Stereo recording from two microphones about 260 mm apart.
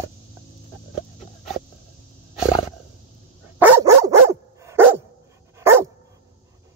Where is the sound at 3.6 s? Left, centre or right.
Centre.